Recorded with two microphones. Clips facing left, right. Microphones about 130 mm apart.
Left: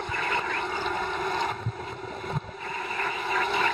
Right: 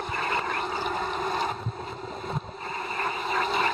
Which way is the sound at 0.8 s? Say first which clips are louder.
Even; 25° right (ahead or behind).